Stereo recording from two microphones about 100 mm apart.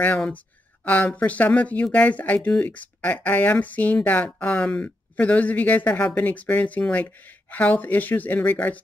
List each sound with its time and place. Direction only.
0.8 s speech: 15° left (ahead or behind)